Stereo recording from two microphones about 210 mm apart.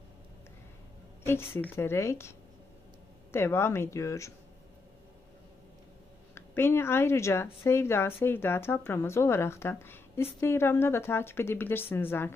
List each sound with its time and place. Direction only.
1.6 s speech: 10° left (ahead or behind)
6.3 s speech: 10° left (ahead or behind)